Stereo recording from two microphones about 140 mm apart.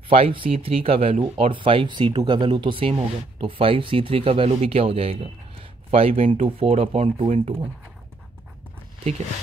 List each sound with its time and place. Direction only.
0.1 s speech: 40° right (ahead or behind)